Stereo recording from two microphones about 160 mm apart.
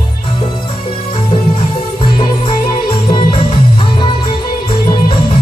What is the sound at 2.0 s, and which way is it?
Music, 30° left (ahead or behind).